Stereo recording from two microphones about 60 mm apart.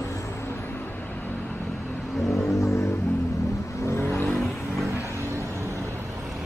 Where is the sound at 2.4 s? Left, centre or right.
Left.